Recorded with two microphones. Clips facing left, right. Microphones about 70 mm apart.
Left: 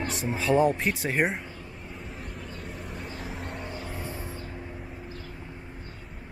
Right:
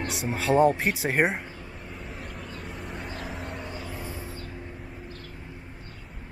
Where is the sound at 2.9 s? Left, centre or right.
Right.